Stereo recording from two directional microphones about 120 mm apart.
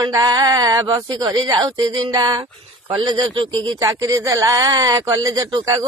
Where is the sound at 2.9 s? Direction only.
45° right (ahead or behind).